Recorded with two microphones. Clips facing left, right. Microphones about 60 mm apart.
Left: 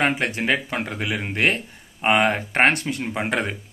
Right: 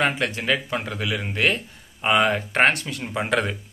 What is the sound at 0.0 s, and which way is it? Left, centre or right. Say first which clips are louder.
Speech: left 1 dB; left.